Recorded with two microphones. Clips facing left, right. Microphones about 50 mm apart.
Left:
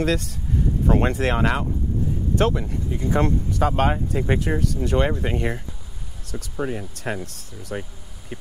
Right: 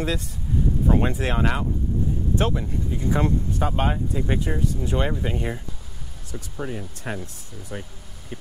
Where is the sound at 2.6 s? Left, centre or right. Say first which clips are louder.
Even; left.